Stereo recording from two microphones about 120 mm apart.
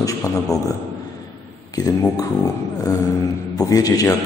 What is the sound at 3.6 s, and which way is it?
Speech, 30° left (ahead or behind).